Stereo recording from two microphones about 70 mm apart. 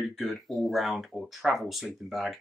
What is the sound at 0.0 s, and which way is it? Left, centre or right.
Speech, centre.